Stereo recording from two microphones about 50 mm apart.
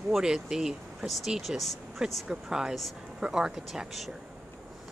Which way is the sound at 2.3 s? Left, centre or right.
Centre.